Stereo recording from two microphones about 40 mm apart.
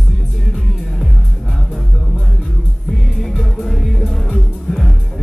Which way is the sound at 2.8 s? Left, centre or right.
Centre.